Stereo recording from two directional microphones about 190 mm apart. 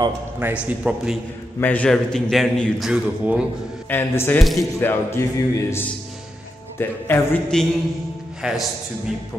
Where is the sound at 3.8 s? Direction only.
10° left (ahead or behind).